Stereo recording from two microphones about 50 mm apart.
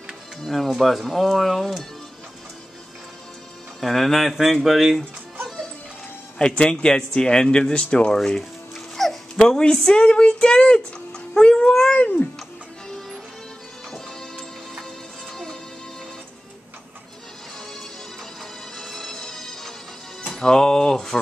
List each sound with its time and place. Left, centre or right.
0.4 s speech: centre
3.8 s speech: centre
6.3 s speech: centre
8.2 s music: centre
9.4 s speech: centre
12.0 s a child's voice: left
13.8 s music: centre
18.8 s music: centre
20.3 s speech: centre